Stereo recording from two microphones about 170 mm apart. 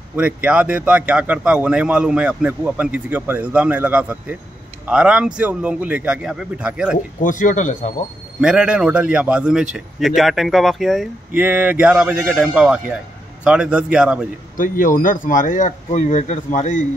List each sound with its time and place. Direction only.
0.1 s speech: 10° right (ahead or behind)
7.2 s speech: 50° left (ahead or behind)
8.4 s a man's voice: 5° right (ahead or behind)
14.6 s speech: 50° left (ahead or behind)